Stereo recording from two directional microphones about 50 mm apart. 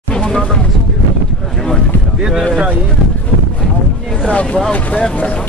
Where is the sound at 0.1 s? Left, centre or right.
Centre.